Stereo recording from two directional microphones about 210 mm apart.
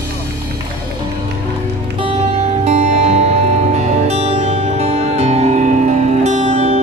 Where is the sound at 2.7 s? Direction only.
30° right (ahead or behind).